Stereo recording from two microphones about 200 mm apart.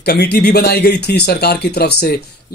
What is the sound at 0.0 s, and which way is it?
A man's voice, 55° left (ahead or behind).